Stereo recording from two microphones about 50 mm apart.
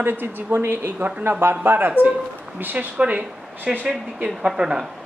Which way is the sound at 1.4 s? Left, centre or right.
Right.